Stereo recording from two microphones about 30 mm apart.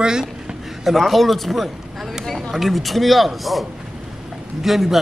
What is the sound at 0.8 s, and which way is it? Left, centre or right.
A man's voice, centre.